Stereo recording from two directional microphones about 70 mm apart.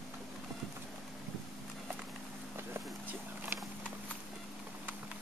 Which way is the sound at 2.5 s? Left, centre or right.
Right.